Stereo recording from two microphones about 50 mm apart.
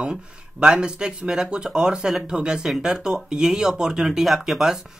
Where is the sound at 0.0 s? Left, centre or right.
Centre.